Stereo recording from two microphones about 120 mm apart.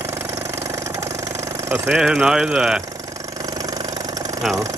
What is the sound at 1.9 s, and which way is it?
Speech, 5° right (ahead or behind).